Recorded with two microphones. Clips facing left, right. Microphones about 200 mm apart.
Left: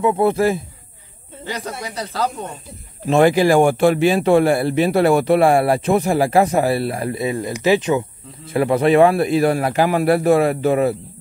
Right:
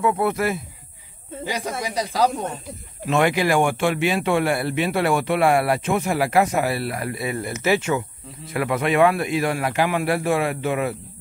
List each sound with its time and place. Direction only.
0.0 s speech: 25° left (ahead or behind)
1.4 s speech: 10° right (ahead or behind)
3.1 s a man's voice: 35° left (ahead or behind)
8.5 s a man's voice: 30° left (ahead or behind)